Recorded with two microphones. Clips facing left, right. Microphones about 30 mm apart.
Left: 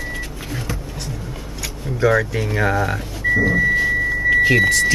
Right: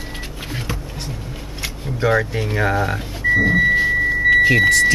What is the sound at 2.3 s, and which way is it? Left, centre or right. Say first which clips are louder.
Speech: even; centre.